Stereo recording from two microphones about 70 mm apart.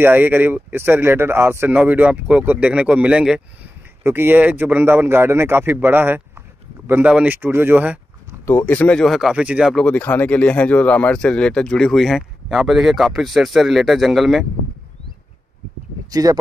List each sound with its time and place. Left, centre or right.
0.0 s speech: right
4.0 s a man's voice: right
6.9 s speech: centre
7.3 s a man's voice: right
8.5 s speech: left
8.7 s speech: centre
9.0 s speech: centre
9.3 s speech: centre
9.8 s speech: left; by 14.4 s centre
16.1 s speech: right